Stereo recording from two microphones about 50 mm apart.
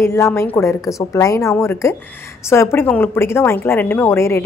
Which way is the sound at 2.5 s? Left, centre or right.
Left.